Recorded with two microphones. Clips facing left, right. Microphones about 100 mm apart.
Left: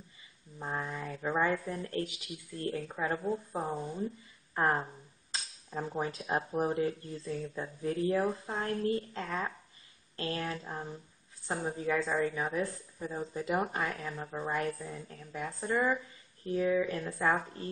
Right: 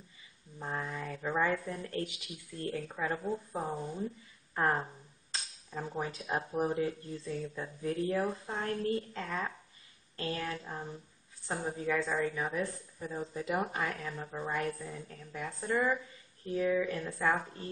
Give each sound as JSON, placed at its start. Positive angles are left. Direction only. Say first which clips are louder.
{"t": 0.6, "sound": "a woman's voice", "louder": "left 1 dB", "side_deg": 5}
{"t": 5.9, "sound": "a woman's voice", "louder": "left 2 dB", "side_deg": 0}